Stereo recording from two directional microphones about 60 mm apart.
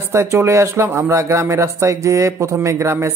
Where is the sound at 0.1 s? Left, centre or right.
Right.